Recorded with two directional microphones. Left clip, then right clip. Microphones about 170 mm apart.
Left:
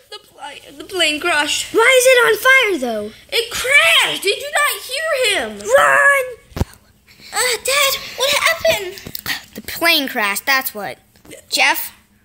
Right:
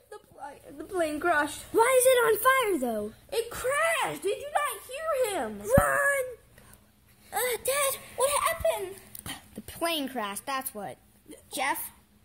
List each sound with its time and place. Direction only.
0.4 s a woman's voice: 40° right (ahead or behind)
1.7 s speech: 5° left (ahead or behind)
3.4 s a woman's voice: 35° right (ahead or behind); by 5.4 s 50° right (ahead or behind)
5.7 s speech: 10° left (ahead or behind)
7.2 s a woman's voice: 40° right (ahead or behind)
9.1 s speech: 5° left (ahead or behind)